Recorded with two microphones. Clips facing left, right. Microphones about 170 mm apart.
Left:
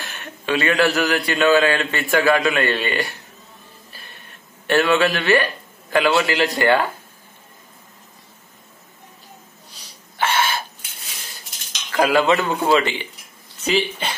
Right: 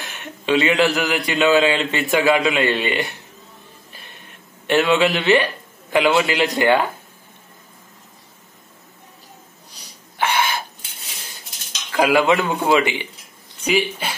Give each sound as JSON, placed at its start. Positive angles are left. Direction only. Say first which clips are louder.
{"t": 0.0, "sound": "a man's voice", "louder": "right 1 dB", "side_deg": -20}
{"t": 4.6, "sound": "a man's voice", "louder": "right 1 dB", "side_deg": -15}
{"t": 9.8, "sound": "a sound", "louder": "even", "side_deg": -15}
{"t": 12.0, "sound": "a man's voice", "louder": "right 1 dB", "side_deg": -15}